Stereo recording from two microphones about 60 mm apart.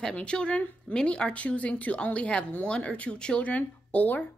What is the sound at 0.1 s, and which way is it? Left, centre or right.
Speech, centre.